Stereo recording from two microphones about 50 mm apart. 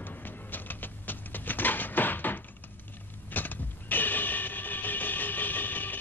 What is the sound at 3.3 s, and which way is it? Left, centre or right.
Music, left.